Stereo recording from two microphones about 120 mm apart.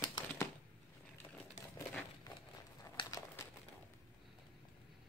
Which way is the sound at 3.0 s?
30° left (ahead or behind).